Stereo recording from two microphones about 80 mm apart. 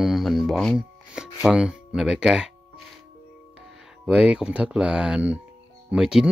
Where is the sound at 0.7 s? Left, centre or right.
Centre.